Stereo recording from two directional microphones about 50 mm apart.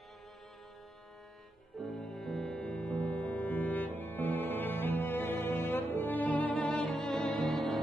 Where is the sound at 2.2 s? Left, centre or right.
Centre.